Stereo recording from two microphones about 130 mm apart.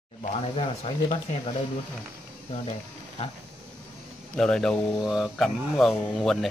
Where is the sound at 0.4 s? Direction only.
50° left (ahead or behind).